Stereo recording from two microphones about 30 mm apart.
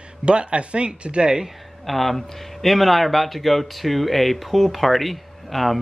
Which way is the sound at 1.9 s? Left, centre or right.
Centre.